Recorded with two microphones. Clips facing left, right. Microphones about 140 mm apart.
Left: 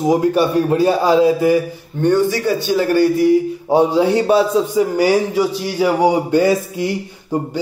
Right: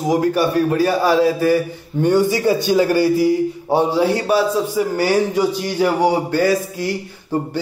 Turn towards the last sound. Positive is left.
turn(degrees=20)  # may be behind; listen again after turning